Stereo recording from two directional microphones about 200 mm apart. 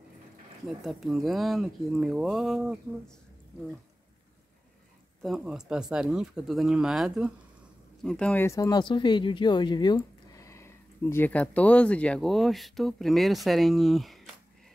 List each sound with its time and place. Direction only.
0.7 s speech: centre (ahead or behind)
5.2 s speech: centre (ahead or behind)